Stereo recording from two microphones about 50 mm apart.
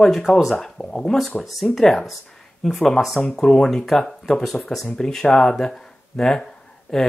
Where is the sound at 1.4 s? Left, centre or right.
Centre.